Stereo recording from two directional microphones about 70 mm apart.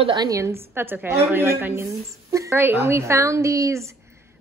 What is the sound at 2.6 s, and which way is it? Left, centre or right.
A woman's voice, right.